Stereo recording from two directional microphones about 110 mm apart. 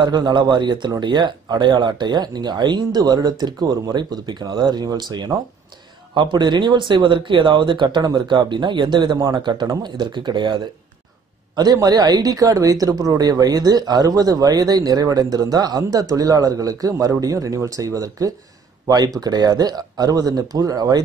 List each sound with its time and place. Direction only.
0.0 s speech: 45° right (ahead or behind)